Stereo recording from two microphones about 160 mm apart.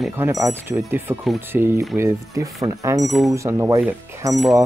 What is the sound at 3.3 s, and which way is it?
Speech, 20° right (ahead or behind).